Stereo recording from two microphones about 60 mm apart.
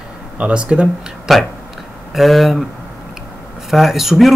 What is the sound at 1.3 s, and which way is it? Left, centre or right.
Speech, centre.